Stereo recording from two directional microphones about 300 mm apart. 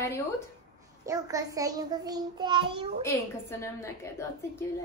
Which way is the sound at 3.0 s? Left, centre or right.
Centre.